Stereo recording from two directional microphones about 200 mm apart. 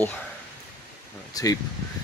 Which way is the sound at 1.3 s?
20° left (ahead or behind).